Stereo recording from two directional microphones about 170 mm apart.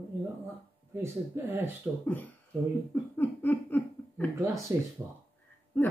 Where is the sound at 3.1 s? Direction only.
10° left (ahead or behind).